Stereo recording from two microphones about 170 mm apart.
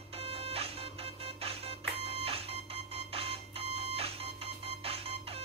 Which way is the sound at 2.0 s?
35° right (ahead or behind).